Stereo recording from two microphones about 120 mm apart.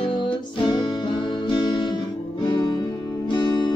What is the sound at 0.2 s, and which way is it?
Music, 40° left (ahead or behind).